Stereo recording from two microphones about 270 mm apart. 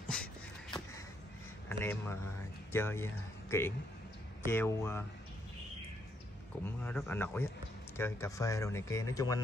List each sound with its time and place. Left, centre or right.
0.1 s a sound: centre
1.7 s speech: centre
6.6 s speech: centre